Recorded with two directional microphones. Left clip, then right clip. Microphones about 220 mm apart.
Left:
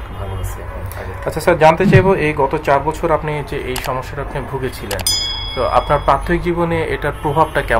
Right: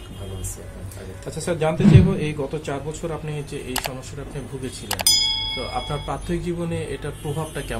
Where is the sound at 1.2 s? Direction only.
40° left (ahead or behind).